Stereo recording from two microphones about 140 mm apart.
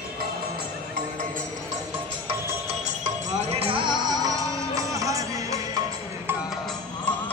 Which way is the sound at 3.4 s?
40° right (ahead or behind).